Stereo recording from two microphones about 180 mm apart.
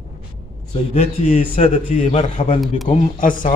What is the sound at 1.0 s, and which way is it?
A man's voice, 35° left (ahead or behind).